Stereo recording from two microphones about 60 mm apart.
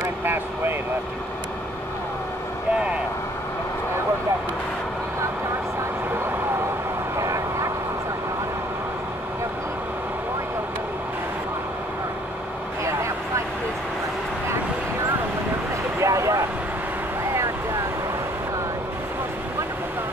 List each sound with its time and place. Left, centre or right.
0.2 s vehicle: right
7.2 s vehicle: right
16.0 s vehicle: right